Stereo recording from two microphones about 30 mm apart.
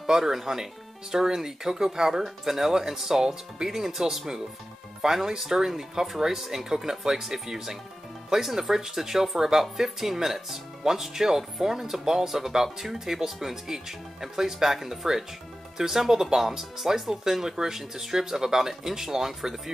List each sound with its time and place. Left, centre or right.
0.2 s speech: centre